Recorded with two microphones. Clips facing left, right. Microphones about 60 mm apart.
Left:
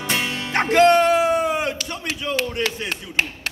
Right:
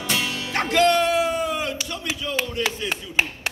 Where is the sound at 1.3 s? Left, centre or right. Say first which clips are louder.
Left 4 dB; left.